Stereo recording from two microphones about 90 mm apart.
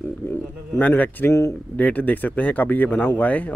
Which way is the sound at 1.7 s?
20° left (ahead or behind).